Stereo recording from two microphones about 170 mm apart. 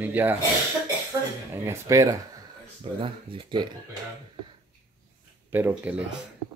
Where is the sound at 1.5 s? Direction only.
15° right (ahead or behind).